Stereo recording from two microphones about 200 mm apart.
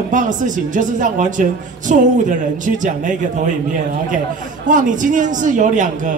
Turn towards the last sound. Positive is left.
turn(degrees=-40)  # may be behind; listen again after turning